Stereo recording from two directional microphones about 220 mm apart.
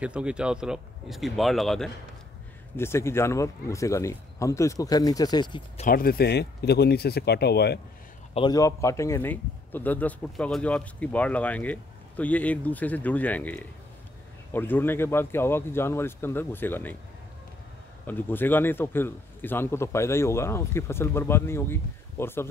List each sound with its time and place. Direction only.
0.0 s speech: 5° right (ahead or behind)
2.8 s speech: 10° left (ahead or behind)
5.9 s speech: 40° left (ahead or behind)
8.4 s speech: 15° left (ahead or behind)
18.0 s speech: 10° left (ahead or behind)